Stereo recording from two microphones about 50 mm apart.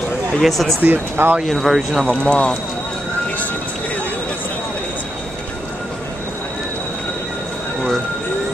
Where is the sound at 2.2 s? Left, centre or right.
Centre.